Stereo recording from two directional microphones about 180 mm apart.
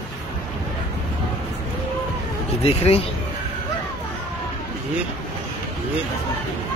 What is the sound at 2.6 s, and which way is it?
Speech, 35° left (ahead or behind).